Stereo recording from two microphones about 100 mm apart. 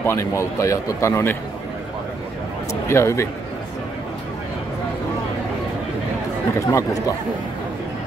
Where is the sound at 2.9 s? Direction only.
30° left (ahead or behind).